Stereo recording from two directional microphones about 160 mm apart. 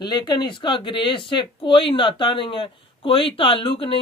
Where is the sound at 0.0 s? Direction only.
25° left (ahead or behind).